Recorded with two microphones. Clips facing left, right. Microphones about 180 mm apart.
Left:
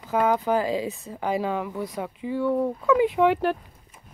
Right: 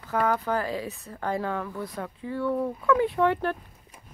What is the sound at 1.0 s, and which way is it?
Speech, 10° left (ahead or behind).